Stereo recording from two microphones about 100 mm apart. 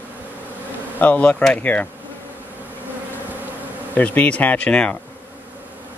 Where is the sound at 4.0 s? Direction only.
15° left (ahead or behind).